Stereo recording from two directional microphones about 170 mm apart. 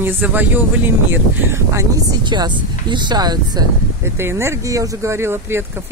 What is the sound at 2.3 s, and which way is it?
Speech, 25° right (ahead or behind).